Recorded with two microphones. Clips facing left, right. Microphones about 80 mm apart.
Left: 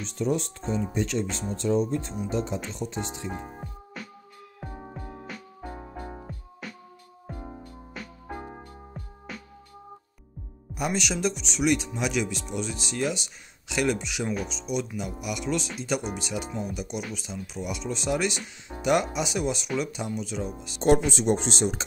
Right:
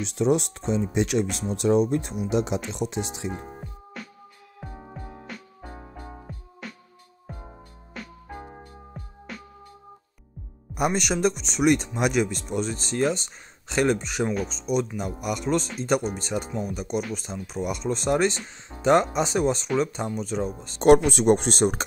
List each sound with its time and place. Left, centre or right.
0.0 s speech: right
3.9 s music: centre
6.6 s music: centre
10.7 s speech: right
18.7 s speech: right
20.8 s speech: right